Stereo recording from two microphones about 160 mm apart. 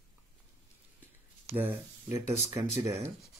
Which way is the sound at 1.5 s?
15° right (ahead or behind).